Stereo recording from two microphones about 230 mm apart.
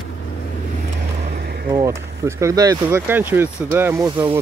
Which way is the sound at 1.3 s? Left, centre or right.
Right.